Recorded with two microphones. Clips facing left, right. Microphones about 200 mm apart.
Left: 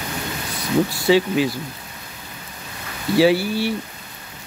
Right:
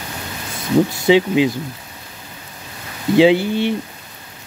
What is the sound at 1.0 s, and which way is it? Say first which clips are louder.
Speech: right 3 dB; 20° right (ahead or behind).